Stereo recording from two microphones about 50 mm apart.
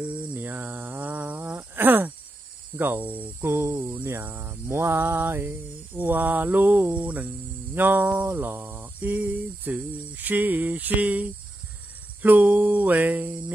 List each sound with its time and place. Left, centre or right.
0.0 s a sound: right
1.1 s insect: right
1.6 s a sound: right
3.4 s cricket: right
3.8 s a sound: right
5.9 s cricket: right
7.7 s cricket: right
8.5 s cricket: right
9.0 s cricket: right